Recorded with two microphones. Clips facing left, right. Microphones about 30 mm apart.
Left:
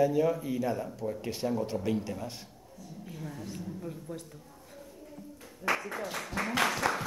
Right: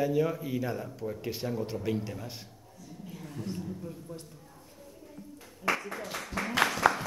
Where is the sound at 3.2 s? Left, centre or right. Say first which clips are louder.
Right 4 dB; right.